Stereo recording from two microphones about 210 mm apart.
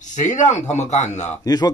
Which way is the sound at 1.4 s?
20° left (ahead or behind).